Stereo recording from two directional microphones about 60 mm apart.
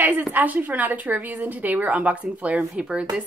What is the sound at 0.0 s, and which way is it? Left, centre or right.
Speech, right.